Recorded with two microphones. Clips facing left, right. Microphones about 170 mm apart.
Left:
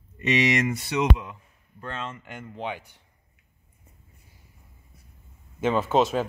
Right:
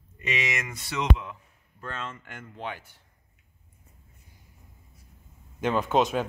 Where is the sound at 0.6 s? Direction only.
30° left (ahead or behind).